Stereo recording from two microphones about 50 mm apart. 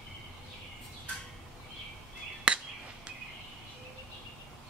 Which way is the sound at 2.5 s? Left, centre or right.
Right.